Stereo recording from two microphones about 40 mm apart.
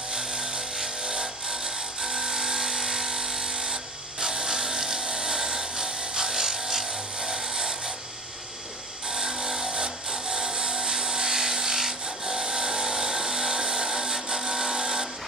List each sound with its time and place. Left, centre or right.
0.1 s wood: centre
9.0 s tools: centre